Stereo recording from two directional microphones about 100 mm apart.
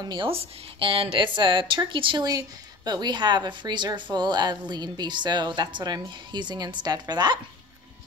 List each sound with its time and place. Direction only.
0.0 s a woman's voice: 50° right (ahead or behind)
0.3 s a woman's voice: 65° right (ahead or behind)
2.2 s a woman's voice: 40° right (ahead or behind)